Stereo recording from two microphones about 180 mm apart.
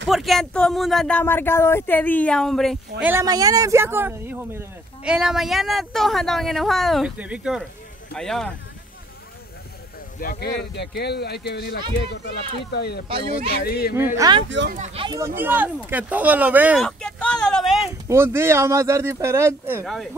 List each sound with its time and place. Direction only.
0.1 s speech: centre (ahead or behind)
3.0 s speech: 10° right (ahead or behind); by 8.5 s 5° left (ahead or behind)
10.2 s speech: 50° left (ahead or behind)
10.6 s speech: 65° left (ahead or behind)
13.9 s speech: 15° right (ahead or behind)
14.7 s speech: 40° right (ahead or behind)
15.0 s speech: 15° right (ahead or behind)
16.8 s speech: 5° left (ahead or behind)
18.0 s speech: 15° right (ahead or behind)
19.8 s speech: centre (ahead or behind)